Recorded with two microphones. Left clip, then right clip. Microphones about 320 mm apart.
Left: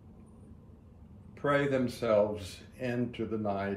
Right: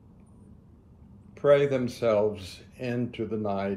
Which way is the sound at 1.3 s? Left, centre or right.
Centre.